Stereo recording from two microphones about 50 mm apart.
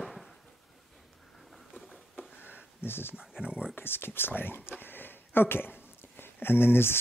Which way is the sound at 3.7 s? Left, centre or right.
Left.